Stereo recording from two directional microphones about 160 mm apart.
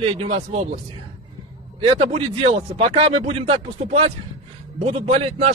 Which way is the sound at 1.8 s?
35° right (ahead or behind).